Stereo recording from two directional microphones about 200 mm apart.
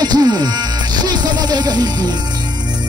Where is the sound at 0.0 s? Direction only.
20° right (ahead or behind).